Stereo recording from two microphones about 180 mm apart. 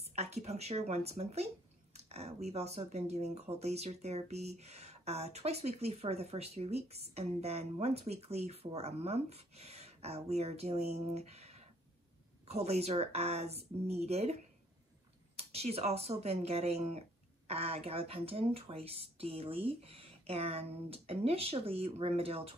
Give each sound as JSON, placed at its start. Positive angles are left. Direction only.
{"t": 0.0, "sound": "speech", "side_deg": -35}